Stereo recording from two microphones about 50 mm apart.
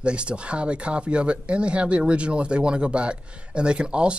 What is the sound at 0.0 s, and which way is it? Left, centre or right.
Speech, right.